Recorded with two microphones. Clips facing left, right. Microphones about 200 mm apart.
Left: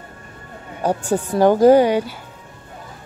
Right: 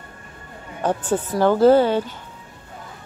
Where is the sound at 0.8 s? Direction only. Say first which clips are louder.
Left 2 dB; 10° left (ahead or behind).